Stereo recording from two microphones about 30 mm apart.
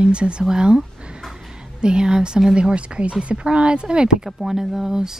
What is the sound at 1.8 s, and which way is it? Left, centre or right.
A woman's voice, right.